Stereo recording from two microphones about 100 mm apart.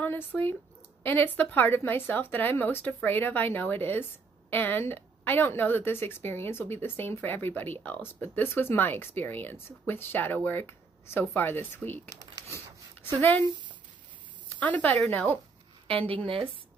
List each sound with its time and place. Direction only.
0.0 s a woman's voice: 20° left (ahead or behind)
12.1 s crumpling: 35° right (ahead or behind)
13.2 s a woman's voice: 20° left (ahead or behind)
14.6 s a woman's voice: 15° left (ahead or behind)
15.9 s speech: 65° right (ahead or behind)